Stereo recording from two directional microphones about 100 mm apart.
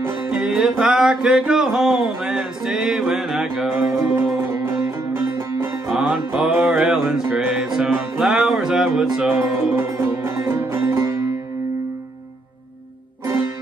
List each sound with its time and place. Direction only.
0.3 s music: 5° right (ahead or behind)
3.9 s music: 30° right (ahead or behind)
5.9 s music: 10° right (ahead or behind)
9.3 s music: 20° right (ahead or behind)
9.8 s music: 30° right (ahead or behind)